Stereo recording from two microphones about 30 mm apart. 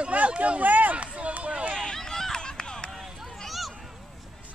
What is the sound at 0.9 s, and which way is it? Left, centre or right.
Run, right.